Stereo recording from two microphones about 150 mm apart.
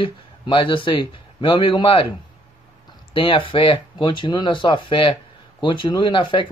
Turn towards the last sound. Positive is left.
turn(degrees=35)  # may be behind; listen again after turning